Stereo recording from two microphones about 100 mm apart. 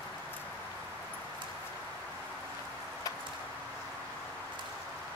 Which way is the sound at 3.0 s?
40° left (ahead or behind).